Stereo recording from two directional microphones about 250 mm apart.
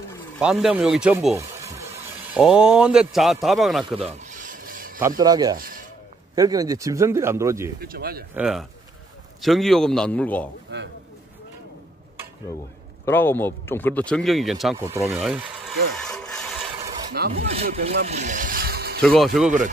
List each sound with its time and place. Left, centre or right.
0.4 s a man's voice: centre
4.0 s filing: right
5.0 s speech: centre
7.8 s speech: right
8.4 s a man's voice: centre
10.7 s a man's voice: right
13.0 s a man's voice: centre
16.0 s wood: centre
17.4 s speech: right
18.0 s a sound: right
18.9 s a man's voice: centre